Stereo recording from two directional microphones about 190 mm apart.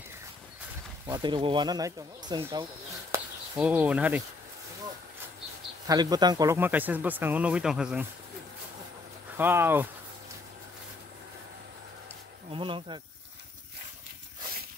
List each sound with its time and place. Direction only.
1.0 s speech: 20° right (ahead or behind)
3.1 s a sound: 10° right (ahead or behind)
5.9 s speech: 20° right (ahead or behind); by 8.1 s 5° right (ahead or behind)
9.4 s speech: 10° right (ahead or behind)
12.4 s speech: 25° right (ahead or behind)